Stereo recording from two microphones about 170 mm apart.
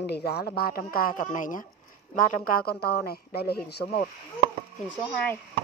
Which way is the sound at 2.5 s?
65° left (ahead or behind).